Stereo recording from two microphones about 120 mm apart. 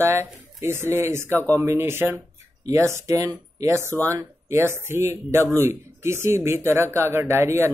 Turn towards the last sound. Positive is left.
turn(degrees=-20)  # may be behind; listen again after turning